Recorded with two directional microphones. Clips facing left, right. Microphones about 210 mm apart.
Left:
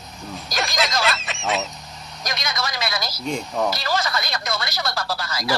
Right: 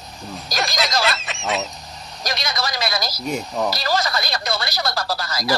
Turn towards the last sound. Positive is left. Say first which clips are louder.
# right 2 dB
turn(degrees=-40)  # may be behind; listen again after turning